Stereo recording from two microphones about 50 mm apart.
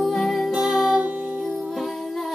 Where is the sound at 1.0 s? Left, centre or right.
Right.